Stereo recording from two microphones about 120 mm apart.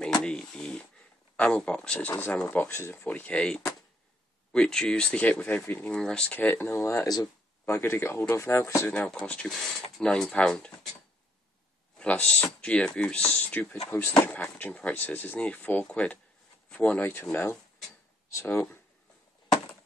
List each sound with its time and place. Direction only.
0.0 s a sound: 5° left (ahead or behind)
1.3 s speech: 10° left (ahead or behind)
8.8 s speech: 10° left (ahead or behind)
12.0 s speech: 10° left (ahead or behind)